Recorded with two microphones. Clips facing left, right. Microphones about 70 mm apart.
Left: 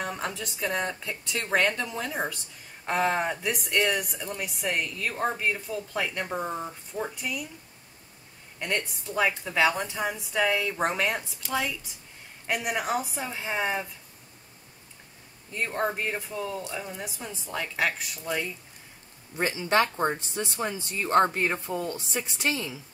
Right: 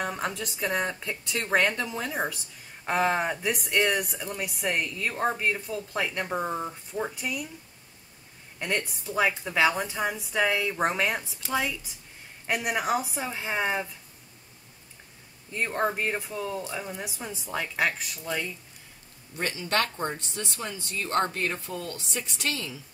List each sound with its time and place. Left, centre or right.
0.0 s speech: centre
8.5 s speech: centre
15.5 s speech: centre
19.4 s a woman's voice: centre